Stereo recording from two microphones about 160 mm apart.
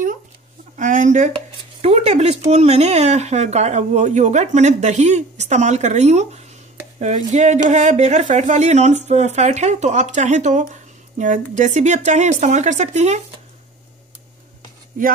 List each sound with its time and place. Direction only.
0.7 s speech: 50° right (ahead or behind)
1.8 s speech: 40° right (ahead or behind)